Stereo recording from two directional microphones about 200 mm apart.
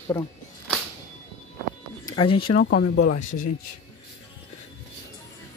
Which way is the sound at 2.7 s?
50° left (ahead or behind).